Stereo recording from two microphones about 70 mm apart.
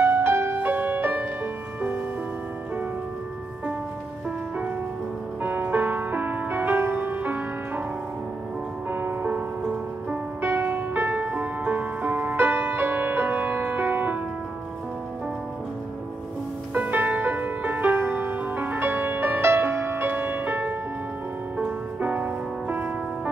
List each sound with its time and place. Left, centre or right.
0.0 s music: right
5.4 s music: right
8.9 s music: right
16.7 s music: right